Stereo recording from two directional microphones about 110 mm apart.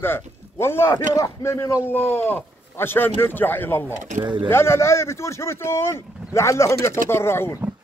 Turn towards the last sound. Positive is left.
turn(degrees=20)  # may be behind; listen again after turning